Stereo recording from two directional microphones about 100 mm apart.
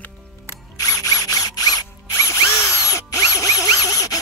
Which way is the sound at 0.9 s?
35° left (ahead or behind).